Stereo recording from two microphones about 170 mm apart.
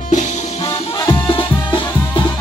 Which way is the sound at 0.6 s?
20° left (ahead or behind).